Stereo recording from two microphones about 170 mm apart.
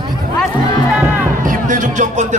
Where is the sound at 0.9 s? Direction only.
10° right (ahead or behind).